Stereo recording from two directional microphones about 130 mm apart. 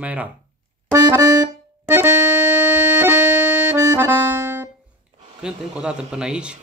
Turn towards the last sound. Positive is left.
turn(degrees=-5)  # may be behind; listen again after turning